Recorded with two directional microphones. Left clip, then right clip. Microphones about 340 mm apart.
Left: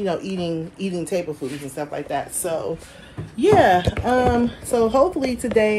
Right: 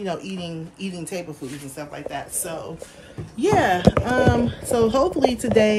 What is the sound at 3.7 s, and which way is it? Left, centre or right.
Speech, right.